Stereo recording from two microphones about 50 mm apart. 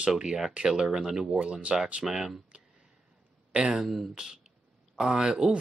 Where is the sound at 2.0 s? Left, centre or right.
Centre.